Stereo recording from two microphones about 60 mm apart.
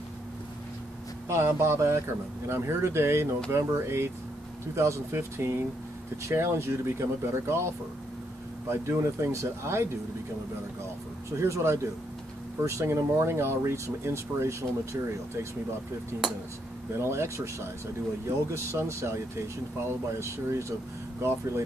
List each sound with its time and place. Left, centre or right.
1.3 s speech: right
8.6 s speech: right
11.3 s speech: right
17.0 s speech: right
18.5 s speech: right